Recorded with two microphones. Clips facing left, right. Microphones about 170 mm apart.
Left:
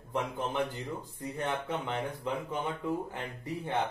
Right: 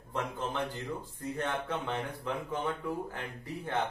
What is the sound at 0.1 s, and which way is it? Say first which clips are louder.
A man's voice: left 2 dB; 15° left (ahead or behind).